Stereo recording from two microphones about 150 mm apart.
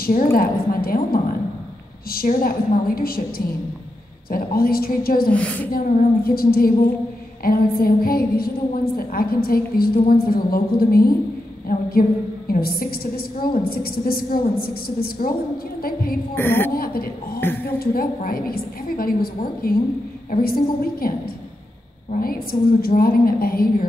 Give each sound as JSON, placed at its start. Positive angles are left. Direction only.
{"t": 0.0, "sound": "a woman's voice", "side_deg": 75}
{"t": 5.3, "sound": "a woman's voice", "side_deg": 10}
{"t": 5.7, "sound": "a woman's voice", "side_deg": 80}
{"t": 11.7, "sound": "a woman's voice", "side_deg": 70}
{"t": 12.4, "sound": "a woman's voice", "side_deg": 85}
{"t": 16.3, "sound": "a woman's voice", "side_deg": 15}
{"t": 16.7, "sound": "a woman's voice", "side_deg": 75}
{"t": 22.1, "sound": "a woman's voice", "side_deg": 75}